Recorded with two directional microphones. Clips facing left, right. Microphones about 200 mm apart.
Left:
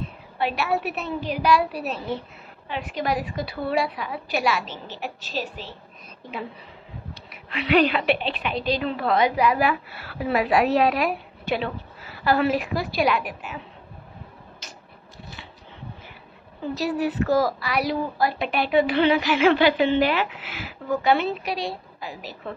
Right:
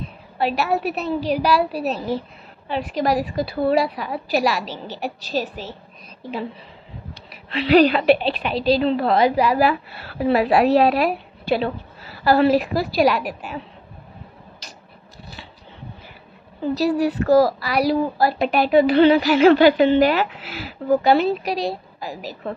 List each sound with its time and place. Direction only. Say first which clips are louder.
0.4 s a woman's voice: right 3 dB; 35° right (ahead or behind)
7.2 s a woman's voice: right 5 dB; 35° right (ahead or behind)
16.7 s a woman's voice: right 5 dB; 35° right (ahead or behind)